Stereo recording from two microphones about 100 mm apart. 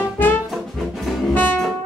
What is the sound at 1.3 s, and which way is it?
Music, 15° left (ahead or behind).